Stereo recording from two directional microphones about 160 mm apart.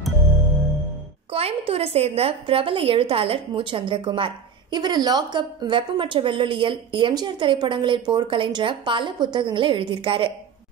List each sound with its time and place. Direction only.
1.3 s a woman's voice: 35° right (ahead or behind)